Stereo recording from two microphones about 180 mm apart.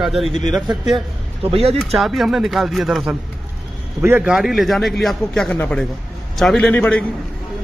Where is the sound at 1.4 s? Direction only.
35° right (ahead or behind).